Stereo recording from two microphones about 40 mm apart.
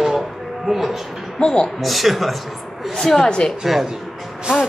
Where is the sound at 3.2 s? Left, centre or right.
Centre.